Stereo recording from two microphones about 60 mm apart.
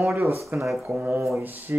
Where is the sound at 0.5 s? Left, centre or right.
Right.